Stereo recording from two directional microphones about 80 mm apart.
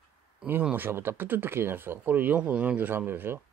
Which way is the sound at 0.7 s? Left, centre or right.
Right.